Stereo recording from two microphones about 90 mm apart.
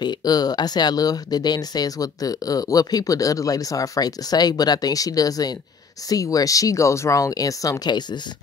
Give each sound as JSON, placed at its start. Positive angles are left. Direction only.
{"t": 0.0, "sound": "speech", "side_deg": 50}